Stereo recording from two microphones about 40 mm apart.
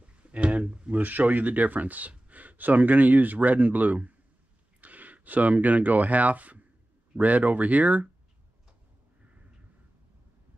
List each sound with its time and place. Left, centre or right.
0.2 s speech: right